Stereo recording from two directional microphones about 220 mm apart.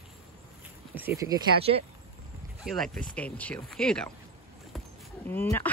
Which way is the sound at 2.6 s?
Centre (ahead or behind).